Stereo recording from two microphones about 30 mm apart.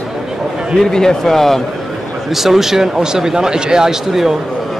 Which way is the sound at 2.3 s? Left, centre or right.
Centre.